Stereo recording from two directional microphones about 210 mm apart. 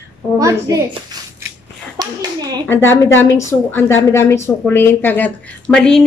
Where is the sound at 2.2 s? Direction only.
20° right (ahead or behind).